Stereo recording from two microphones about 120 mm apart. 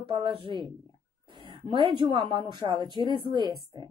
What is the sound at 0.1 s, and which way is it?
A woman's voice, 45° right (ahead or behind).